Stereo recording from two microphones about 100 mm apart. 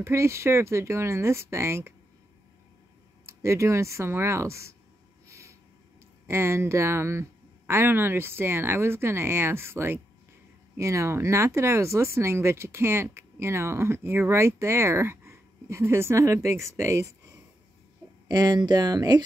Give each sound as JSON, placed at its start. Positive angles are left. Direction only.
{"t": 0.0, "sound": "speech", "side_deg": -25}
{"t": 3.3, "sound": "speech", "side_deg": -30}
{"t": 5.3, "sound": "a sound", "side_deg": -30}
{"t": 6.2, "sound": "speech", "side_deg": -25}
{"t": 18.3, "sound": "speech", "side_deg": -40}